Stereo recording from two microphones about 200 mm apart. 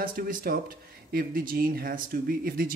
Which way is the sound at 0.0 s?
45° right (ahead or behind).